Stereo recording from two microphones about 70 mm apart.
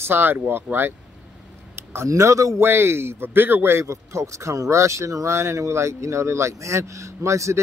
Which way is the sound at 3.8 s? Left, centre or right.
Right.